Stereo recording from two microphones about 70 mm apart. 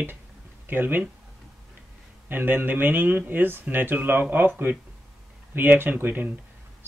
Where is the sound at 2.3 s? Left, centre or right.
Right.